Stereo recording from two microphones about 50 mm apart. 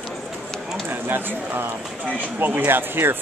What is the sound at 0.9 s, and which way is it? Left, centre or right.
Speech, right.